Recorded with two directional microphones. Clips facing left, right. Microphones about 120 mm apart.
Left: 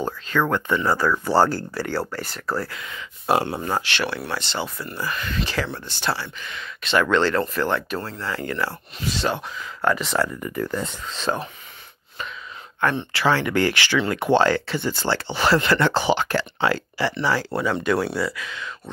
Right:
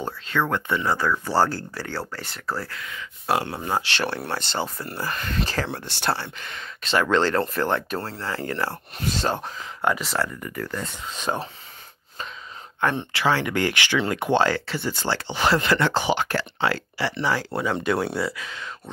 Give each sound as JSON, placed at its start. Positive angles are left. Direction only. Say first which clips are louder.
{"t": 0.5, "sound": "speech", "louder": "left 3 dB", "side_deg": -20}
{"t": 0.9, "sound": "speech", "louder": "left 3 dB", "side_deg": 5}
{"t": 2.7, "sound": "speech", "louder": "left 1 dB", "side_deg": 20}
{"t": 3.8, "sound": "speech", "louder": "left 1 dB", "side_deg": -35}
{"t": 5.7, "sound": "speech", "louder": "right 1 dB", "side_deg": -75}
{"t": 6.0, "sound": "speech", "louder": "even", "side_deg": -50}
{"t": 9.9, "sound": "speech", "louder": "left 3 dB", "side_deg": 0}
{"t": 10.4, "sound": "speech", "louder": "left 4 dB", "side_deg": 20}
{"t": 11.1, "sound": "speech", "louder": "left 1 dB", "side_deg": -10}
{"t": 13.1, "sound": "speech", "louder": "left 2 dB", "side_deg": -15}
{"t": 17.0, "sound": "speech", "louder": "left 2 dB", "side_deg": -15}